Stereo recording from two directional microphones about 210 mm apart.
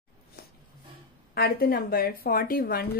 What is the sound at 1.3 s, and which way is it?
A woman's voice, 45° left (ahead or behind).